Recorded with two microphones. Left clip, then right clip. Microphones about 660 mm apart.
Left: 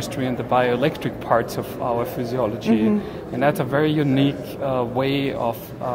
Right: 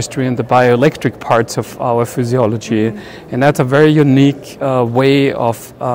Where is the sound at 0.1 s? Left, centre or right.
Right.